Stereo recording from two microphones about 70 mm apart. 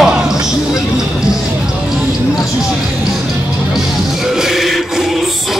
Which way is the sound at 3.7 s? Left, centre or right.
Centre.